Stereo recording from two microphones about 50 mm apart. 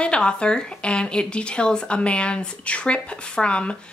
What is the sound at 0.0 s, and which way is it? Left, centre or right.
A woman's voice, centre.